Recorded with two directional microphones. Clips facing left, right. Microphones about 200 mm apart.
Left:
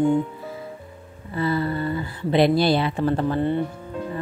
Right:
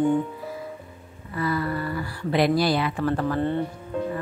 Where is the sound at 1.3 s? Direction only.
25° left (ahead or behind).